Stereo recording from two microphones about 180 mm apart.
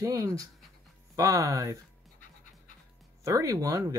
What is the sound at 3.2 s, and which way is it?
Speech, 15° right (ahead or behind).